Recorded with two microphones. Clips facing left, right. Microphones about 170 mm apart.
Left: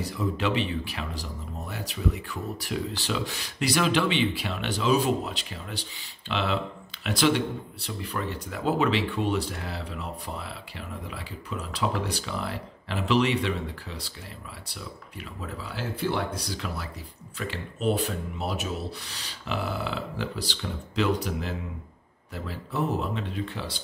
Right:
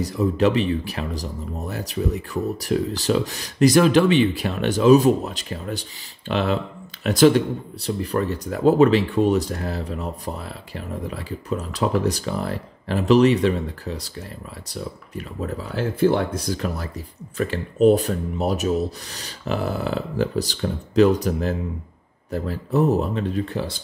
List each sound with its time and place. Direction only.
0.0 s speech: 40° right (ahead or behind)